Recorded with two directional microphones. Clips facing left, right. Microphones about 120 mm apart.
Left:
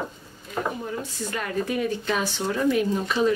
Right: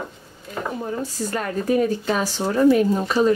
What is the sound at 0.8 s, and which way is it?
Speech, 40° right (ahead or behind).